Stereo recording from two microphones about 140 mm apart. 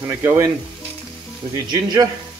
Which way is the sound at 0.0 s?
15° right (ahead or behind).